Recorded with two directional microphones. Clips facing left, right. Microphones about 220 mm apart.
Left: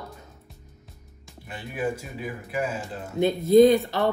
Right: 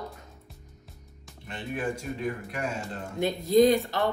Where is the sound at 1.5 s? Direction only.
5° left (ahead or behind).